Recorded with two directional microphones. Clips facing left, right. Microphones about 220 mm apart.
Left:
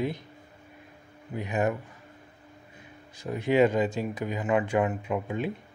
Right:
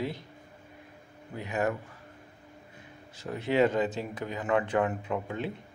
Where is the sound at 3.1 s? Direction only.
15° left (ahead or behind).